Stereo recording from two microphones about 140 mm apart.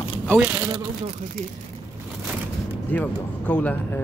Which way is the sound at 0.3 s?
15° right (ahead or behind).